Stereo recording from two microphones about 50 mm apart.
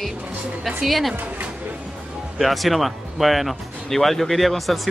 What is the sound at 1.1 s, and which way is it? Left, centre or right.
Speech, right.